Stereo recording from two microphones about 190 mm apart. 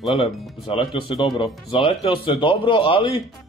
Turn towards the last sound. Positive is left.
turn(degrees=30)  # may be behind; listen again after turning